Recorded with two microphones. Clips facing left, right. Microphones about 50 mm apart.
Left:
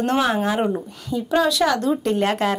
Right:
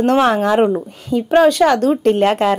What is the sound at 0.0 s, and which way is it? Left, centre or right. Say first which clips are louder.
Speech: right 6 dB; right.